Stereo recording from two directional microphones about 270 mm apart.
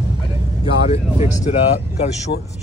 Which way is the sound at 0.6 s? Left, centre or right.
Left.